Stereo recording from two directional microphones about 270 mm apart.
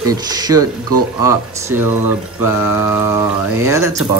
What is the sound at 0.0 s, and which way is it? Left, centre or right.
Speech, centre.